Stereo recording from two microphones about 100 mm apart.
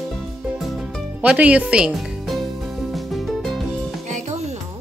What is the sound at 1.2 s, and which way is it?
Speech, 15° right (ahead or behind).